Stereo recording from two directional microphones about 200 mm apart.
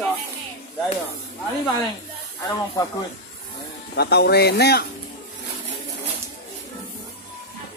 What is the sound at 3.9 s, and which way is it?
Speech, 55° left (ahead or behind).